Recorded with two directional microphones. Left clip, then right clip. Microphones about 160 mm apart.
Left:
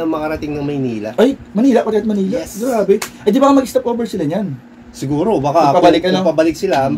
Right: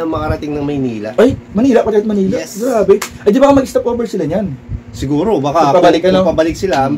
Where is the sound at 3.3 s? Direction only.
25° right (ahead or behind).